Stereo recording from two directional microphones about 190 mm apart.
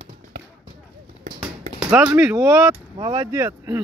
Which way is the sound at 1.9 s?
10° right (ahead or behind).